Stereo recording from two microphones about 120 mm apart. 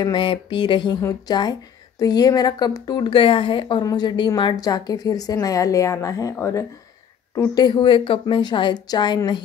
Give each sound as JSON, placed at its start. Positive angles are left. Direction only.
{"t": 0.0, "sound": "a woman's voice", "side_deg": 40}
{"t": 7.5, "sound": "a woman's voice", "side_deg": 35}